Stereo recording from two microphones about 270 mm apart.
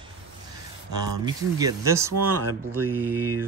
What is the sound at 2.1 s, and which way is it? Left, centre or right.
Speech, right.